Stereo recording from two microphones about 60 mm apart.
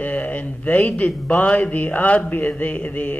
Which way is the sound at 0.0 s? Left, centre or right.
Left.